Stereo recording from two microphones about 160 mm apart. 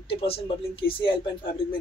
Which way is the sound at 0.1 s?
35° left (ahead or behind).